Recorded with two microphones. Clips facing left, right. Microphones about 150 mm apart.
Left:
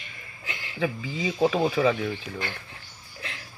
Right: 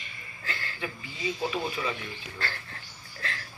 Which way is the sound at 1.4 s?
90° left.